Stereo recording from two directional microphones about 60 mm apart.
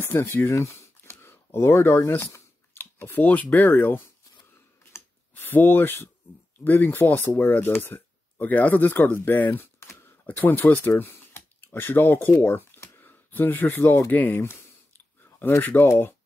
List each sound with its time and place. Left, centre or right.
0.0 s speech: left
1.2 s speech: left
5.3 s speech: left
9.8 s a sound: left
10.2 s speech: left
15.2 s a sound: left
15.6 s speech: left
15.9 s speech: left